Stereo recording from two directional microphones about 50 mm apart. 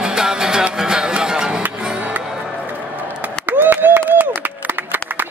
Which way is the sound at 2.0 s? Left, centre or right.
Right.